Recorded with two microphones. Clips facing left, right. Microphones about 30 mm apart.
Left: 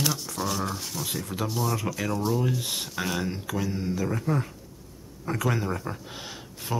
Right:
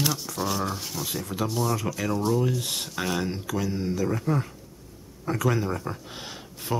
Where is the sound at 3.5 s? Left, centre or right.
Left.